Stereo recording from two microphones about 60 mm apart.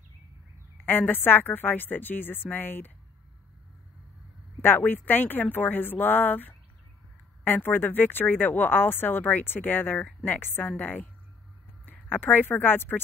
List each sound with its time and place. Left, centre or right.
0.8 s speech: left
4.6 s speech: left